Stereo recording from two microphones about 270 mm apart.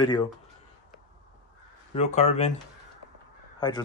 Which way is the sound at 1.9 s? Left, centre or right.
Left.